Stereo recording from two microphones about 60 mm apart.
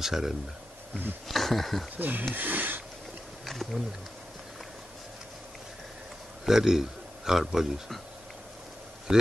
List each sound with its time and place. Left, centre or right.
0.0 s speech: centre
2.0 s speech: right
3.4 s speech: centre
6.4 s a man's voice: centre
9.1 s a man's voice: centre